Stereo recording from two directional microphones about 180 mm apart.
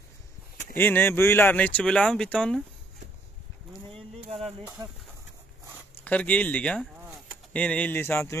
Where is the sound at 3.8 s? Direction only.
35° right (ahead or behind).